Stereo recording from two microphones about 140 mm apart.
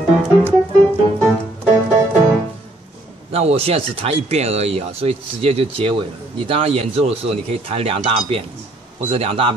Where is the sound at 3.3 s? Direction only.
45° right (ahead or behind).